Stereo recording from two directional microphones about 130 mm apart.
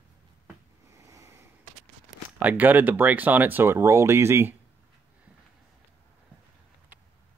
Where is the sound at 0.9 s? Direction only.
25° right (ahead or behind).